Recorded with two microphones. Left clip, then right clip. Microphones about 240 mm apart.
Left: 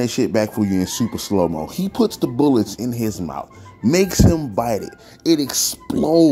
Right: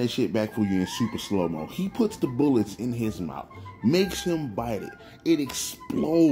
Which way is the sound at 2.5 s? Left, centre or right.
Centre.